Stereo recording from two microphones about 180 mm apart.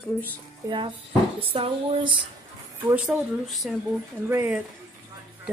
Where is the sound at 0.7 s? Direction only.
25° right (ahead or behind).